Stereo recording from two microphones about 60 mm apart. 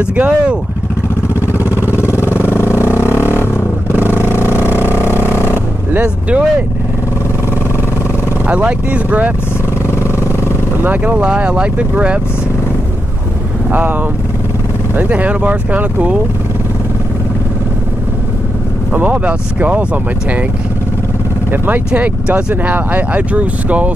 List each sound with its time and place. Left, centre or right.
0.0 s speech: right
2.0 s vehicle: left
4.2 s a sound: left
5.9 s speech: right
8.5 s speech: right
10.8 s speech: right
13.7 s speech: right
15.0 s speech: right
18.9 s speech: right
21.5 s speech: right